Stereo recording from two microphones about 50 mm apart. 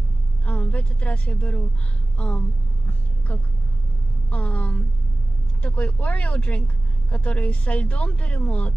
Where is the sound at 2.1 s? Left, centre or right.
Left.